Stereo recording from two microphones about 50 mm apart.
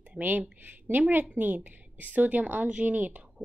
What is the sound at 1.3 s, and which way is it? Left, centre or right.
Speech, right.